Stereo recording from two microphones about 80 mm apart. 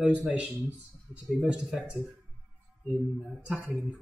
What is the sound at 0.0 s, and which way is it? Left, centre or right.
Speech, centre.